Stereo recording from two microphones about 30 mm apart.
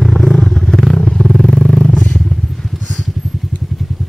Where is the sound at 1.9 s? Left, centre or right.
Left.